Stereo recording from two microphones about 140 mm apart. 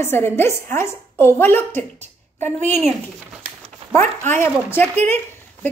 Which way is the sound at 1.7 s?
55° right (ahead or behind).